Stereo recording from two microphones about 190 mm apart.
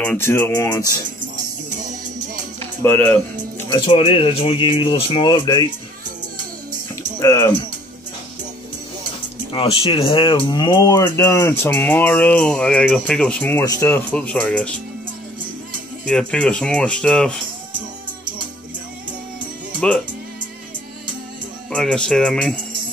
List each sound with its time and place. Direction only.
0.0 s speech: 10° left (ahead or behind)
1.2 s music: 40° right (ahead or behind)
2.6 s music: 10° left (ahead or behind)
3.6 s speech: 25° left (ahead or behind)
7.0 s music: 15° left (ahead or behind)
9.5 s speech: 25° left (ahead or behind); by 14.7 s 5° left (ahead or behind)
16.1 s speech: 5° left (ahead or behind)
21.6 s speech: 5° left (ahead or behind)